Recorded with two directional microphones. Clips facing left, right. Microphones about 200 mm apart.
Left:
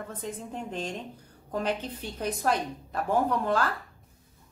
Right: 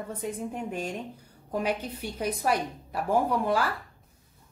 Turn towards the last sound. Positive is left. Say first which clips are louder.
# even
turn(degrees=-10)  # may be behind; listen again after turning